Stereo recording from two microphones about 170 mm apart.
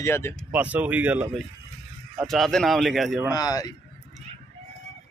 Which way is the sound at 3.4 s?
20° left (ahead or behind).